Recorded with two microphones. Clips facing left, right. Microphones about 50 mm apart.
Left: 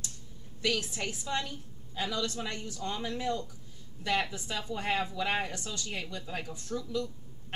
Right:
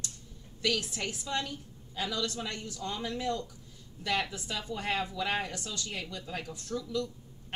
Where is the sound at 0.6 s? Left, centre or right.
Centre.